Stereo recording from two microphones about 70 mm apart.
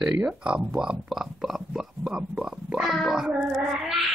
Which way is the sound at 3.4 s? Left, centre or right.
Centre.